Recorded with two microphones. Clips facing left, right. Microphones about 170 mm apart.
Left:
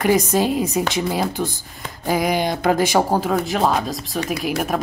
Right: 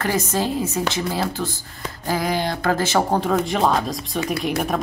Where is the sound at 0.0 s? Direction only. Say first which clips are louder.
Left 5 dB; 15° left (ahead or behind).